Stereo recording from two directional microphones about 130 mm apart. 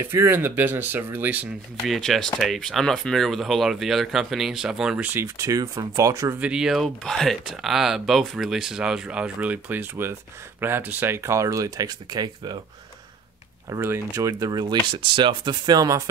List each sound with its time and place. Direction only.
0.0 s speech: 15° right (ahead or behind)
1.9 s speech: centre (ahead or behind); by 6.3 s 25° right (ahead or behind)
6.4 s speech: 5° right (ahead or behind); by 12.5 s 30° right (ahead or behind)
13.7 s speech: 20° right (ahead or behind)